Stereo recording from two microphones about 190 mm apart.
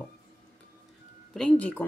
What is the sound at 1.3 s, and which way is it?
Speech, 5° left (ahead or behind).